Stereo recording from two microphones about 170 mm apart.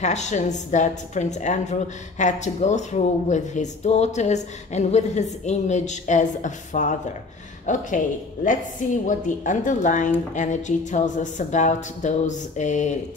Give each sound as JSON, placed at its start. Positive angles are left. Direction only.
{"t": 0.0, "sound": "a woman's voice", "side_deg": 45}
{"t": 9.0, "sound": "a woman's voice", "side_deg": 50}